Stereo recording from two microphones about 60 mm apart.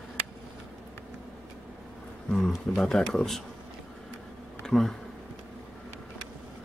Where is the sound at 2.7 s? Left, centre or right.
Centre.